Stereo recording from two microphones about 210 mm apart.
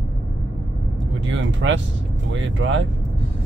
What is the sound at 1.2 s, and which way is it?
Vehicle, 65° right (ahead or behind).